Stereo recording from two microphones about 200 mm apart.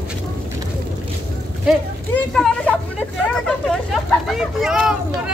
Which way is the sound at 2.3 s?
5° left (ahead or behind).